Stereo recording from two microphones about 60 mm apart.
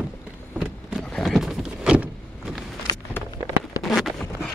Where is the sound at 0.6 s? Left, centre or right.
Centre.